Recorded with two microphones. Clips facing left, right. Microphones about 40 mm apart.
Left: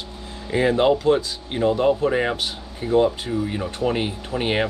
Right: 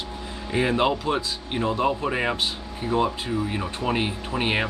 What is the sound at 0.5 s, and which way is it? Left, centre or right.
Speech, centre.